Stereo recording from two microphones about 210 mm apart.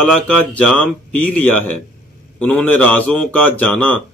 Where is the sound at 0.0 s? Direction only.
5° left (ahead or behind).